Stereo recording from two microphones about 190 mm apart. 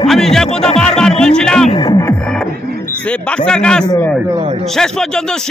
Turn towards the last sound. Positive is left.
turn(degrees=5)  # may be behind; listen again after turning